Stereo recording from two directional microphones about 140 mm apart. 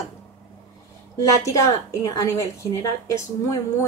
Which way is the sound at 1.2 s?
25° left (ahead or behind).